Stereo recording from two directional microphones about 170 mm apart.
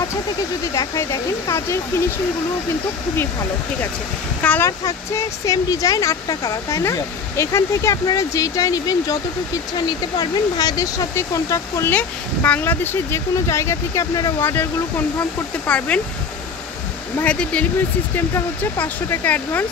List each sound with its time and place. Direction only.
0.7 s speech: 15° left (ahead or behind)
4.4 s speech: 10° left (ahead or behind)
17.2 s speech: 5° left (ahead or behind)